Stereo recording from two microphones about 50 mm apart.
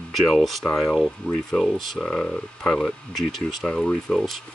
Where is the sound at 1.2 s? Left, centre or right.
Left.